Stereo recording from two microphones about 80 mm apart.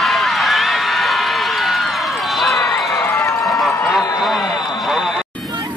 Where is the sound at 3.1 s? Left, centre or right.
Left.